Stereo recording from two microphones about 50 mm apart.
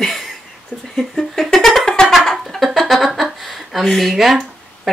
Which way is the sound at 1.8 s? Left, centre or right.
Centre.